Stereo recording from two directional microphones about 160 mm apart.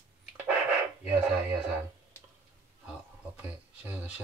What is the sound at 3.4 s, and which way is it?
Speech, 10° right (ahead or behind).